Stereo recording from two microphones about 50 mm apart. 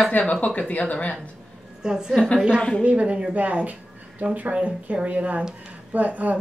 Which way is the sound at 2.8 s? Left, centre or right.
Right.